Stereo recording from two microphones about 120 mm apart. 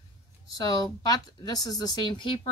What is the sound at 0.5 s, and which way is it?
Speech, 30° left (ahead or behind).